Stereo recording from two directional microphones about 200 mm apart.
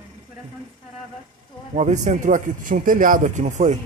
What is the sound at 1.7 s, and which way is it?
A man's voice, 35° right (ahead or behind).